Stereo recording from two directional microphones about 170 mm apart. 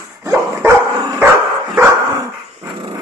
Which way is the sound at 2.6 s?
25° right (ahead or behind).